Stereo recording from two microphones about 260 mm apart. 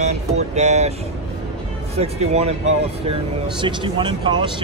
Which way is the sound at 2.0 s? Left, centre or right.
Right.